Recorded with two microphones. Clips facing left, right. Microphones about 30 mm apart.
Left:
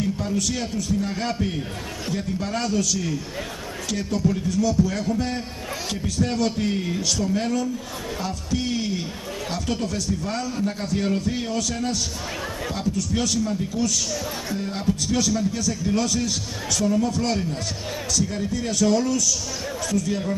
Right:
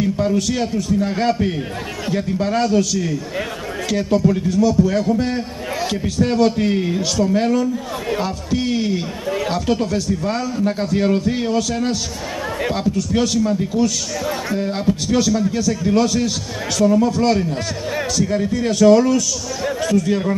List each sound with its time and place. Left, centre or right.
0.0 s a sound: right
0.6 s a man's voice: right
18.3 s a man's voice: right